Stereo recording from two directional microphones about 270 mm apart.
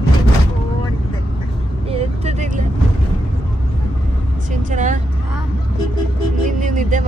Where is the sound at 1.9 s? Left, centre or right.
Right.